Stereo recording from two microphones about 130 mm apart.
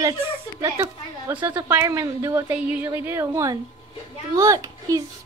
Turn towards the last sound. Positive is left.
turn(degrees=-30)  # may be behind; listen again after turning